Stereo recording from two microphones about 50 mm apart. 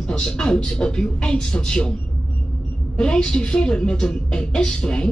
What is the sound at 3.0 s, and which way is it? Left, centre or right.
Speech, centre.